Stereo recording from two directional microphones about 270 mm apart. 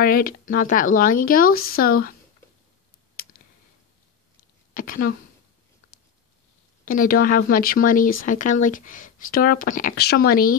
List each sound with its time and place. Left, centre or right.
0.0 s speech: left
3.2 s clicking: left
4.7 s speech: left
6.8 s speech: left